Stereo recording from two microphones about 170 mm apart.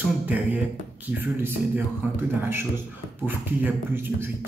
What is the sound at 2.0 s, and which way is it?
A man's voice, 10° right (ahead or behind).